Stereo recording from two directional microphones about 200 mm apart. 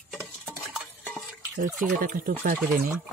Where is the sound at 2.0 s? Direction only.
45° right (ahead or behind).